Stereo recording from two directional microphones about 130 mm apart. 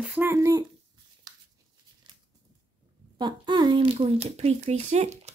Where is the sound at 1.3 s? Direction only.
30° right (ahead or behind).